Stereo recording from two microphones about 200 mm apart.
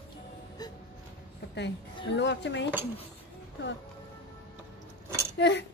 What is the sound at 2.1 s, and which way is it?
Speech, 60° left (ahead or behind).